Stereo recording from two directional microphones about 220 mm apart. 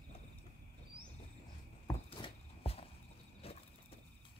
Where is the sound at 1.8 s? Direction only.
20° left (ahead or behind).